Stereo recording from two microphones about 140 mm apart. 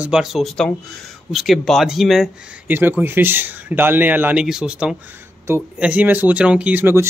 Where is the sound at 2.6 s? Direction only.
15° right (ahead or behind).